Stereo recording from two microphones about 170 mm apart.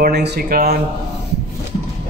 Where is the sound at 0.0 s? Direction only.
75° right (ahead or behind).